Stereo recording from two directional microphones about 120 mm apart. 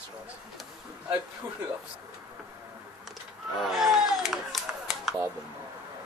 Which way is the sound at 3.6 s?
Centre (ahead or behind).